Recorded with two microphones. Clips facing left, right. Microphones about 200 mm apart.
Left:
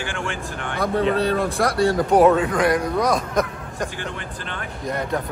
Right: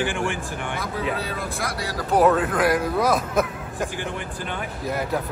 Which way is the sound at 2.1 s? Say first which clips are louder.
Left 1 dB; centre (ahead or behind).